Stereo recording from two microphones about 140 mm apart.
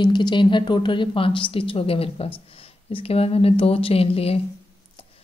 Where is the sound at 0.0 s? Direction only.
35° left (ahead or behind).